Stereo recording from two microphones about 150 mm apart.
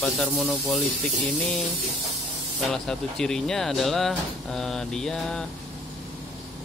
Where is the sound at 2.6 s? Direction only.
5° left (ahead or behind).